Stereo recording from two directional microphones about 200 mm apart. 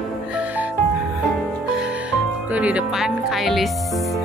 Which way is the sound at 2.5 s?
5° right (ahead or behind).